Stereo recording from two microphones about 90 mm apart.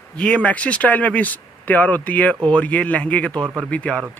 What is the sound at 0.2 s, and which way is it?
Speech, 15° left (ahead or behind).